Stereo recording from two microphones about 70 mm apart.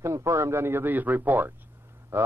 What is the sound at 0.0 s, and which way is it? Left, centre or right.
A man's voice, right.